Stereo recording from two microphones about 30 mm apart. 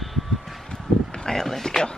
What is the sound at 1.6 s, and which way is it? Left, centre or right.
Speech, left.